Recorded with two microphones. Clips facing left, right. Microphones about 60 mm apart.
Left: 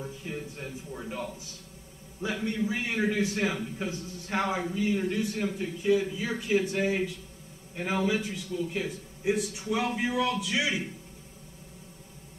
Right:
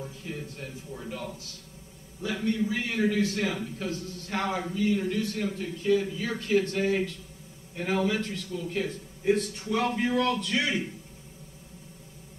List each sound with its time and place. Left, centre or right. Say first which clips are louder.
0.0 s a man's voice: left 1 dB; centre